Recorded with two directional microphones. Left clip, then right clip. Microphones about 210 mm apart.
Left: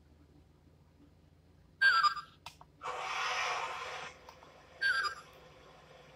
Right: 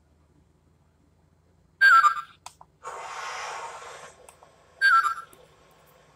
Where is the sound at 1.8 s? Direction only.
25° right (ahead or behind).